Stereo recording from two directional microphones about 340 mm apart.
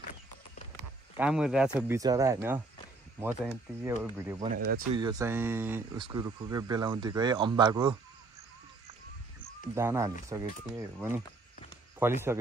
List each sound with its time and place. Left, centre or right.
1.1 s speech: centre
4.6 s speech: right
4.9 s speech: centre
9.8 s speech: centre